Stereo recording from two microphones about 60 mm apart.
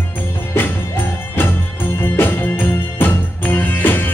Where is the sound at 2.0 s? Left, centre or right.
Left.